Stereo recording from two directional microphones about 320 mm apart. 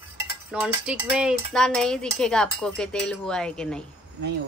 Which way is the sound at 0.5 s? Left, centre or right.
Centre.